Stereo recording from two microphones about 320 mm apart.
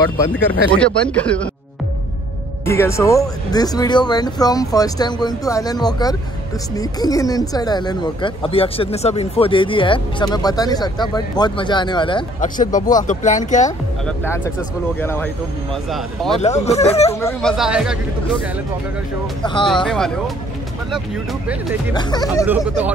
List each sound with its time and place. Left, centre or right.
0.3 s speech: centre
2.6 s speech: centre
14.0 s speech: centre
16.6 s speech: centre
17.1 s speech: centre
19.4 s speech: centre
19.7 s speech: centre
21.9 s speech: centre